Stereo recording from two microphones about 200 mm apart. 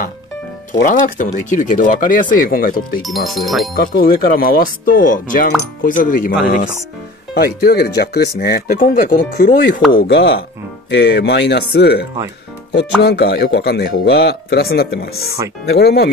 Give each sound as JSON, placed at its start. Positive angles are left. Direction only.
{"t": 0.8, "sound": "speech", "side_deg": 40}
{"t": 3.3, "sound": "speech", "side_deg": 0}
{"t": 3.7, "sound": "speech", "side_deg": 45}
{"t": 7.3, "sound": "speech", "side_deg": 50}